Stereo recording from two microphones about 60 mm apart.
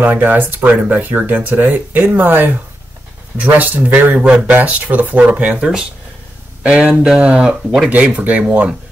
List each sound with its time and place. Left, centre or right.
0.0 s speech: right